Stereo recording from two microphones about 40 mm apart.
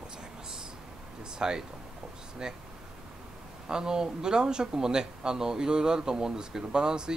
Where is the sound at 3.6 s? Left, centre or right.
Centre.